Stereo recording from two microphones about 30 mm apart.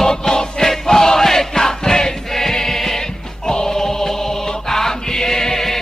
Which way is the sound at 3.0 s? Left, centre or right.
Left.